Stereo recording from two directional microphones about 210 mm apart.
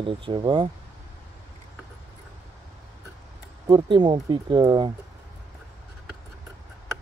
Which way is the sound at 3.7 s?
20° right (ahead or behind).